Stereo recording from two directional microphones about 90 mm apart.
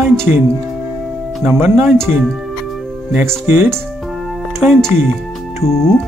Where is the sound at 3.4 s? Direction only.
25° right (ahead or behind).